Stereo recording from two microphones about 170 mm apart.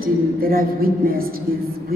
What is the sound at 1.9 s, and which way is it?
Music, 60° right (ahead or behind).